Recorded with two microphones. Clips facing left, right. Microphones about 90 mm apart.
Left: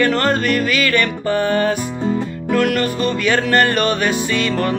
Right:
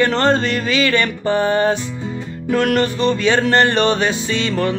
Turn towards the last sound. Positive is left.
turn(degrees=-25)  # may be behind; listen again after turning